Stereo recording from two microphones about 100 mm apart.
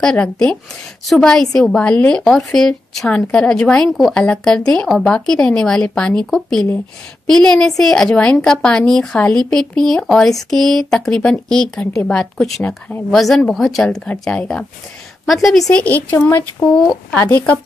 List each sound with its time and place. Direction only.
0.0 s a woman's voice: 10° left (ahead or behind)
15.7 s speech: 15° left (ahead or behind)
16.6 s speech: 5° left (ahead or behind)
17.2 s speech: 15° left (ahead or behind)